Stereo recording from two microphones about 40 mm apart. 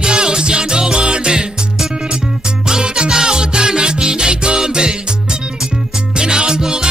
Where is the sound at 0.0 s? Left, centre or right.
Centre.